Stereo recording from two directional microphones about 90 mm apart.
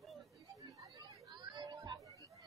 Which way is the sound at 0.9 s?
55° right (ahead or behind).